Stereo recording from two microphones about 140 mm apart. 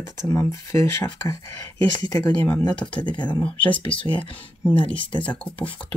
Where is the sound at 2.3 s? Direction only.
10° left (ahead or behind).